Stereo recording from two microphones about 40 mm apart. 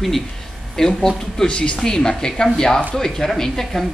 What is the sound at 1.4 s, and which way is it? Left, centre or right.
Speech, left.